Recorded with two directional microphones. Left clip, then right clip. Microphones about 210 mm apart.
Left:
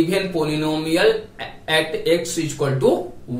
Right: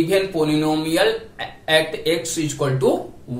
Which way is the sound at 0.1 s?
20° right (ahead or behind).